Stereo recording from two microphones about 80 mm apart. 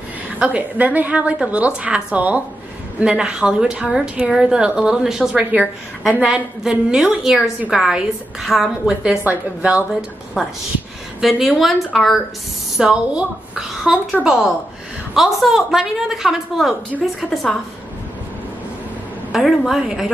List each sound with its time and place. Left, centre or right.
0.4 s a woman's voice: centre
9.3 s a woman's voice: right
10.4 s a woman's voice: centre
12.7 s a woman's voice: centre
19.3 s a woman's voice: centre